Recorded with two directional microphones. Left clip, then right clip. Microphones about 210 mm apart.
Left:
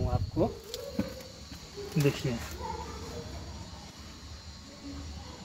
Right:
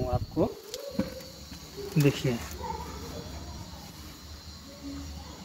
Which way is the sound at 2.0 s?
45° right (ahead or behind).